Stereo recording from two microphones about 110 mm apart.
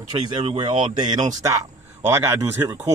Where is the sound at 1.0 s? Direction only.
40° right (ahead or behind); by 2.9 s 25° right (ahead or behind).